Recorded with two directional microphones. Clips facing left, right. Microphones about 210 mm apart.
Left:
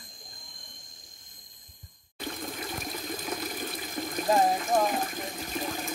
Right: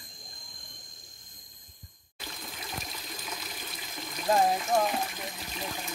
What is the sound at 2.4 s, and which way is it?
Water, 50° left (ahead or behind).